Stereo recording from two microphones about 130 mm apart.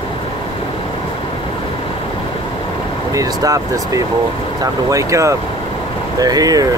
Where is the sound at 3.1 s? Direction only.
25° right (ahead or behind).